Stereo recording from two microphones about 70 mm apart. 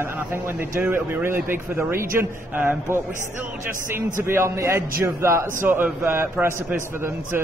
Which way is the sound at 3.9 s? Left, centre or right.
Right.